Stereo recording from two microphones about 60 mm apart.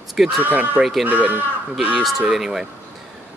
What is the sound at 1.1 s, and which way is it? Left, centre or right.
Speech, right.